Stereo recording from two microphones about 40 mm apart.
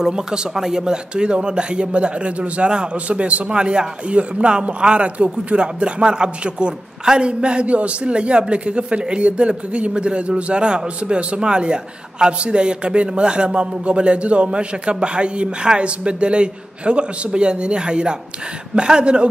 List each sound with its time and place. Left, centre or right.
0.0 s a man's voice: centre
3.4 s speech: right